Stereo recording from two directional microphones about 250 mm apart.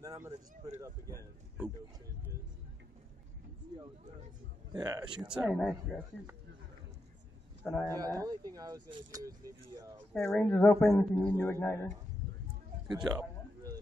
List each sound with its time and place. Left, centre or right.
0.0 s a sound: centre
0.7 s speech: centre
4.7 s speech: centre
5.3 s speech: centre
7.6 s speech: centre
10.1 s a man's voice: centre
12.9 s a sound: centre